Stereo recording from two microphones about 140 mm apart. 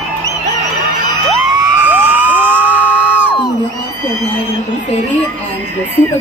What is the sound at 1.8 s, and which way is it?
Crowd, 10° right (ahead or behind).